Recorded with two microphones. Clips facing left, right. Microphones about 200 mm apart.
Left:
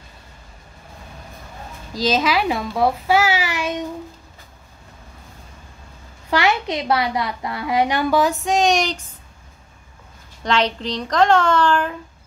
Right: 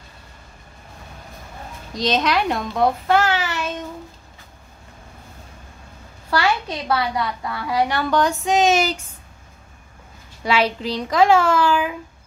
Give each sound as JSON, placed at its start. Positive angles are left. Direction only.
{"t": 2.0, "sound": "a child's voice", "side_deg": 0}
{"t": 6.3, "sound": "a woman's voice", "side_deg": 20}
{"t": 8.2, "sound": "a child's voice", "side_deg": 0}
{"t": 10.4, "sound": "a child's voice", "side_deg": -5}